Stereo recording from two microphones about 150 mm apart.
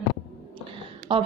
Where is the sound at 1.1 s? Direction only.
35° right (ahead or behind).